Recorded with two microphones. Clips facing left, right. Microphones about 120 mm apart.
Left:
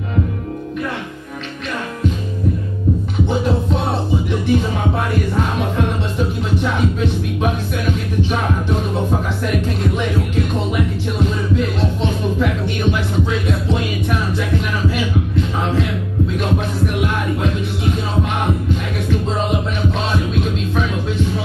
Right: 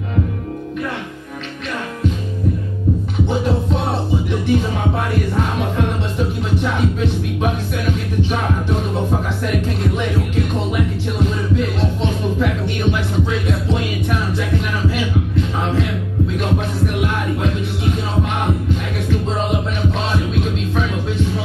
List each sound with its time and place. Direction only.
3.3 s music: 25° left (ahead or behind)